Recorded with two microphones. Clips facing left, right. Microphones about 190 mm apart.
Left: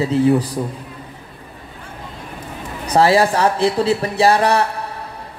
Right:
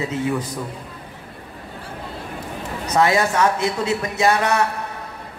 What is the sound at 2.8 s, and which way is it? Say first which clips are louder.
A woman's voice: left 4 dB; 30° left (ahead or behind).